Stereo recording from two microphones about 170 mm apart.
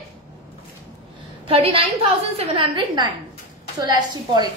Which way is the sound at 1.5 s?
35° right (ahead or behind).